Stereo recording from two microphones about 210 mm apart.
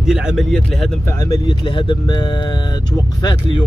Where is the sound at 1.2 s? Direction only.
20° left (ahead or behind).